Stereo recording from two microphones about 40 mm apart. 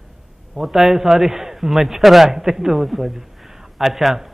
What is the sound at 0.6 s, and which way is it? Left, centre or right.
A man's voice, centre.